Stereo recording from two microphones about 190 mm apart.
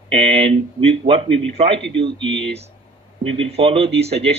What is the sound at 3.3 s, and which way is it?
Speech, 30° right (ahead or behind).